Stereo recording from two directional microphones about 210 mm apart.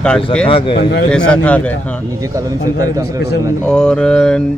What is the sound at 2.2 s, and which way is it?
Speech, 15° right (ahead or behind).